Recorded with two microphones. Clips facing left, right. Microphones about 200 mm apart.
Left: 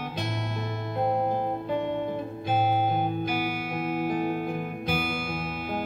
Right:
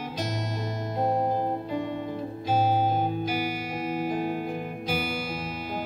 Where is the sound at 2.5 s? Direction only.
55° left (ahead or behind).